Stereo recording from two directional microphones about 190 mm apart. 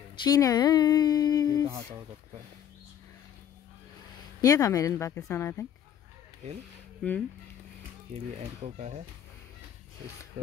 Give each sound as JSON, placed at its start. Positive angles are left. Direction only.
{"t": 0.1, "sound": "speech", "side_deg": 20}
{"t": 1.7, "sound": "speech", "side_deg": -15}
{"t": 4.4, "sound": "speech", "side_deg": 20}
{"t": 7.0, "sound": "speech", "side_deg": 5}
{"t": 8.1, "sound": "speech", "side_deg": -35}